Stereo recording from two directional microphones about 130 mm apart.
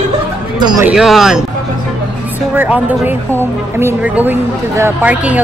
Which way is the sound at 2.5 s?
10° right (ahead or behind).